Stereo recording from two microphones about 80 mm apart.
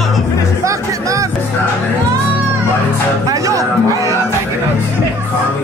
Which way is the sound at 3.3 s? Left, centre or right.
Right.